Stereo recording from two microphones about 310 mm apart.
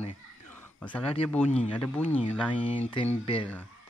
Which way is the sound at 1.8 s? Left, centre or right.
Centre.